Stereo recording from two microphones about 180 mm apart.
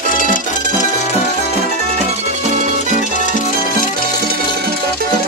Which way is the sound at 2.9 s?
45° left (ahead or behind).